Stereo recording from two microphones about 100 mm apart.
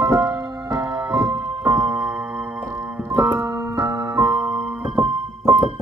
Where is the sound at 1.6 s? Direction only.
30° right (ahead or behind).